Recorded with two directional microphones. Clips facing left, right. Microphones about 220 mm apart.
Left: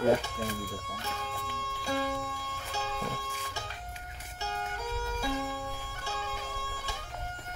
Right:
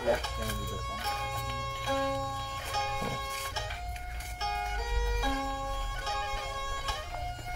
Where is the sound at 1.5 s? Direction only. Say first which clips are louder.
Even; 15° right (ahead or behind).